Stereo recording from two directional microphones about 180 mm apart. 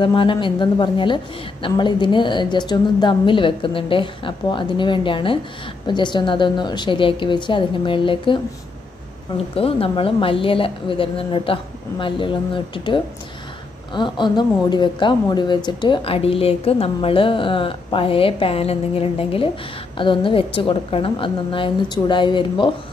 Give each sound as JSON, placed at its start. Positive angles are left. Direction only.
{"t": 0.0, "sound": "a woman's voice", "side_deg": 30}
{"t": 9.6, "sound": "a woman's voice", "side_deg": 30}